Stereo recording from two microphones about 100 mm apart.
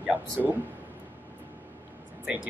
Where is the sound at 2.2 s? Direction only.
10° right (ahead or behind).